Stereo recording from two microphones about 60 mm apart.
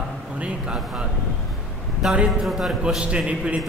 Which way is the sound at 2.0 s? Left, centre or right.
Centre.